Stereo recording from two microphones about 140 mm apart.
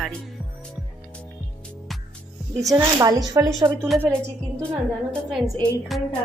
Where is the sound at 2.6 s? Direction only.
25° right (ahead or behind).